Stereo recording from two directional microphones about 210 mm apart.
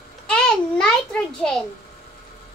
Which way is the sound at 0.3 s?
5° left (ahead or behind).